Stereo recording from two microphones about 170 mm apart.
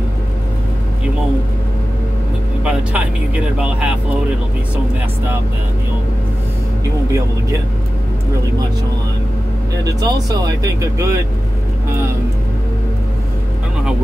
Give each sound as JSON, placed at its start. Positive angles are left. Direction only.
{"t": 2.6, "sound": "speech", "side_deg": -5}
{"t": 9.9, "sound": "speech", "side_deg": -20}